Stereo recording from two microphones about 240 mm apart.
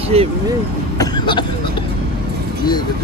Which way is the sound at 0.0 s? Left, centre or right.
Right.